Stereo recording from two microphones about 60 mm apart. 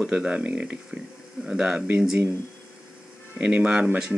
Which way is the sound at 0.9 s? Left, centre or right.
Centre.